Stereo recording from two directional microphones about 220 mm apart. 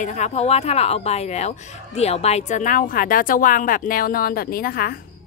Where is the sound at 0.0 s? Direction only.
35° left (ahead or behind).